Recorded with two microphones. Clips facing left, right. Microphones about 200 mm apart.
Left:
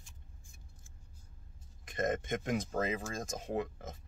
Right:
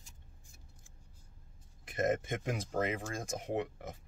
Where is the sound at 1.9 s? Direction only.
30° right (ahead or behind).